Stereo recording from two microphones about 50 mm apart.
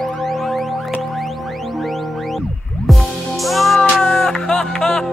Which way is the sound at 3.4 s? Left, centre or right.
Centre.